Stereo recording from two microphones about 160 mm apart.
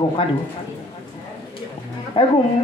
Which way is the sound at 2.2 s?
30° left (ahead or behind).